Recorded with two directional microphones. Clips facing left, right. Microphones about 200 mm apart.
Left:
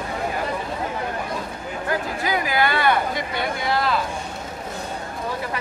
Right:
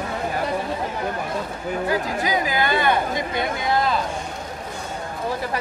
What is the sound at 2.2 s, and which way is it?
Chatter, 20° right (ahead or behind).